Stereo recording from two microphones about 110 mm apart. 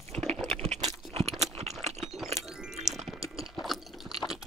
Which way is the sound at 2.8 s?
85° right.